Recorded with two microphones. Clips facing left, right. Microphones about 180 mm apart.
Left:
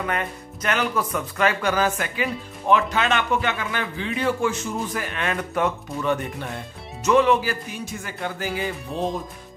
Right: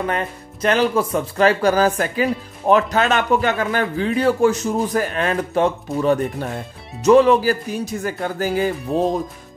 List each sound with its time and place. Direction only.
0.0 s speech: 30° right (ahead or behind)